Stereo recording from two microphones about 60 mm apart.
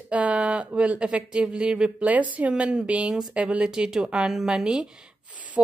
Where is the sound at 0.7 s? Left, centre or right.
Centre.